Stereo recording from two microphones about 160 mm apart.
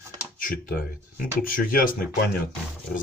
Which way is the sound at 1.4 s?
60° left (ahead or behind).